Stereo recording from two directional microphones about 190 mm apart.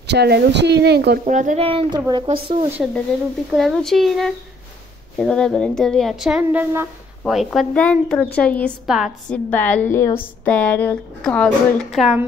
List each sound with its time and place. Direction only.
0.0 s speech: 60° right (ahead or behind)
1.2 s speech: 40° right (ahead or behind)
3.5 s speech: centre (ahead or behind)
7.2 s speech: centre (ahead or behind)
9.5 s speech: 10° left (ahead or behind)